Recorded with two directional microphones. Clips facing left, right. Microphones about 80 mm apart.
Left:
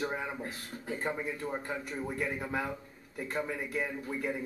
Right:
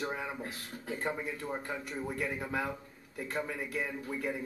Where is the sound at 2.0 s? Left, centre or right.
Centre.